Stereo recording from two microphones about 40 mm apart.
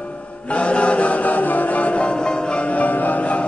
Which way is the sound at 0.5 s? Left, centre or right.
Left.